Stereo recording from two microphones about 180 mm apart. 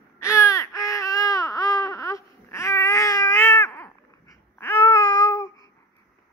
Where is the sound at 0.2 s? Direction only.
15° left (ahead or behind).